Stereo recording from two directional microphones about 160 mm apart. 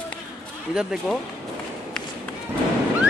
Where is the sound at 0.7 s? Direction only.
5° right (ahead or behind).